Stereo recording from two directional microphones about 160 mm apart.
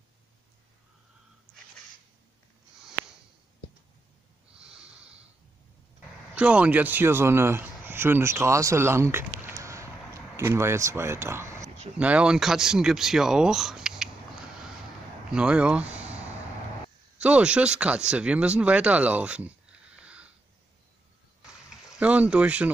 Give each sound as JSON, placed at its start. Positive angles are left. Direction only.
{"t": 4.6, "sound": "snort", "side_deg": -5}
{"t": 6.3, "sound": "speech", "side_deg": -10}
{"t": 15.3, "sound": "speech", "side_deg": -5}
{"t": 17.2, "sound": "speech", "side_deg": -5}
{"t": 20.0, "sound": "a sound", "side_deg": -10}
{"t": 21.9, "sound": "speech", "side_deg": -10}